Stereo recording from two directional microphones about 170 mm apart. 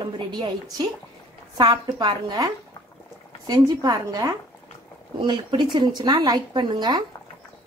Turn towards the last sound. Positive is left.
turn(degrees=-25)  # may be behind; listen again after turning